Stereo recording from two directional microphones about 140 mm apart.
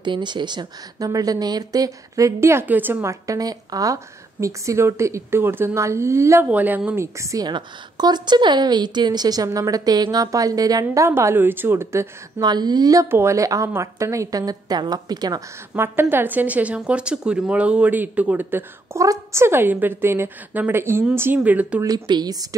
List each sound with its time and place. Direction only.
0.0 s a woman's voice: 35° right (ahead or behind)
12.4 s a woman's voice: 30° right (ahead or behind)
15.7 s a woman's voice: 15° right (ahead or behind)
21.8 s a woman's voice: 30° right (ahead or behind)